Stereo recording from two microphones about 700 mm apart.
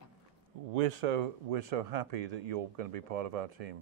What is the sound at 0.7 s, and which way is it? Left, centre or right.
Speech, right.